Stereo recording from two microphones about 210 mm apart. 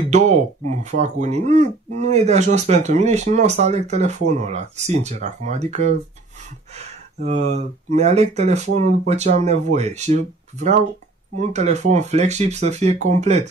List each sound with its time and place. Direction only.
0.8 s speech: 35° right (ahead or behind)
6.8 s speech: 30° right (ahead or behind)